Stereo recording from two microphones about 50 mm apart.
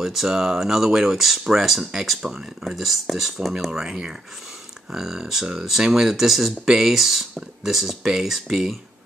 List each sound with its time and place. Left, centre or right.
0.0 s speech: centre
2.8 s speech: centre
3.8 s speech: centre